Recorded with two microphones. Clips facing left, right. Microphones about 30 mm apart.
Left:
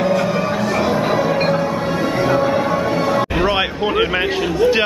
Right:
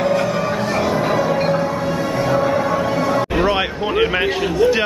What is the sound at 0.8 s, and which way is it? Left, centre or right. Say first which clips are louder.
Music: even; centre.